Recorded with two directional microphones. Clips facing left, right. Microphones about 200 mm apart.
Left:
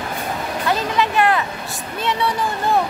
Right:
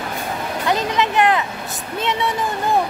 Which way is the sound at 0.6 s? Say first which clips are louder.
Right 1 dB; 20° right (ahead or behind).